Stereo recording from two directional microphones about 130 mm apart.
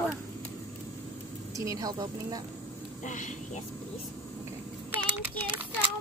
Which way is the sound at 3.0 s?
70° left (ahead or behind).